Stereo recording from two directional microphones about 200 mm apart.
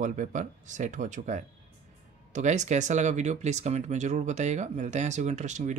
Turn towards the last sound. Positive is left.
turn(degrees=-35)  # may be behind; listen again after turning